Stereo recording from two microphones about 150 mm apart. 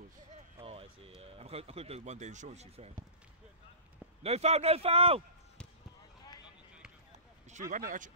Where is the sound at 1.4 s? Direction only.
40° right (ahead or behind).